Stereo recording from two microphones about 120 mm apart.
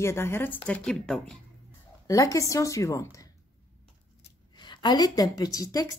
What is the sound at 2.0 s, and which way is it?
A woman's voice, 30° left (ahead or behind).